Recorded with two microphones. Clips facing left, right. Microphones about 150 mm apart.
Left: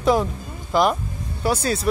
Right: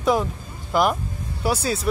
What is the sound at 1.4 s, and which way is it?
Speech, 5° right (ahead or behind).